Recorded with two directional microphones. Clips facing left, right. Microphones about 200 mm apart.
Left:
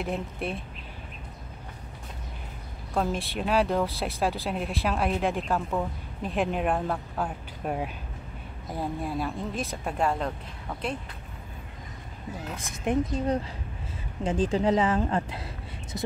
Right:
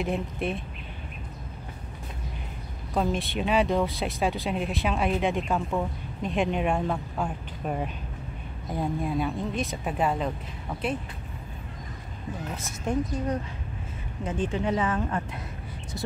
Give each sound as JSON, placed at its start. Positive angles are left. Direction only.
{"t": 0.0, "sound": "speech", "side_deg": 0}
{"t": 2.9, "sound": "speech", "side_deg": 0}
{"t": 12.5, "sound": "a woman's voice", "side_deg": 15}
{"t": 14.2, "sound": "speech", "side_deg": 35}